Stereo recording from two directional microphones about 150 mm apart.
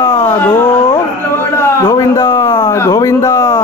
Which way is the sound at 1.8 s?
25° left (ahead or behind).